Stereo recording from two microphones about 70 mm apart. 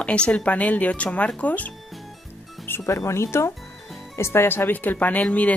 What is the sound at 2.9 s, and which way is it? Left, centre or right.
Speech, left.